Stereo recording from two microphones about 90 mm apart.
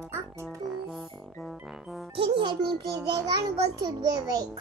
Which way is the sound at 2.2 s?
60° right (ahead or behind).